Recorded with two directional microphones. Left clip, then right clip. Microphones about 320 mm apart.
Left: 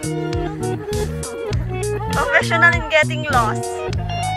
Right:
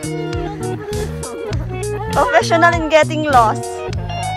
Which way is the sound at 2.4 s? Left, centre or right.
Centre.